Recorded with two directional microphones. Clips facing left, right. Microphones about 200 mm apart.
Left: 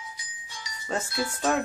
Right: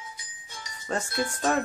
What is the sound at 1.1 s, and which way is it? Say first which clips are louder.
Music: right 1 dB; 50° right (ahead or behind).